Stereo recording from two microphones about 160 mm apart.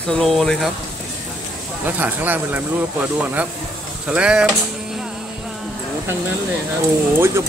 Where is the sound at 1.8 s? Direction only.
10° right (ahead or behind).